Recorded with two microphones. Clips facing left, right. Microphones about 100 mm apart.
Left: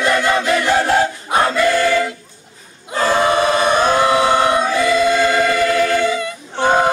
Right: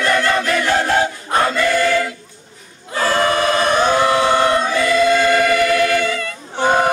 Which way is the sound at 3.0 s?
15° left (ahead or behind).